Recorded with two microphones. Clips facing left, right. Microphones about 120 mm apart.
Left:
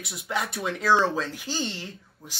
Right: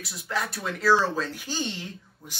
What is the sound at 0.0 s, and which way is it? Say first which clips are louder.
Speech: left 1 dB; centre (ahead or behind).